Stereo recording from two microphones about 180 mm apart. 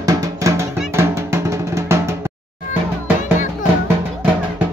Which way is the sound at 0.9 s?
15° right (ahead or behind).